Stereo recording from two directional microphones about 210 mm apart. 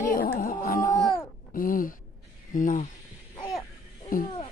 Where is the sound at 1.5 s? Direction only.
40° left (ahead or behind).